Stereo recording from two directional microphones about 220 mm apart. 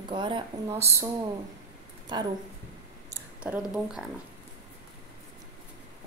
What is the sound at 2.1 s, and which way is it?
Speech, 20° right (ahead or behind).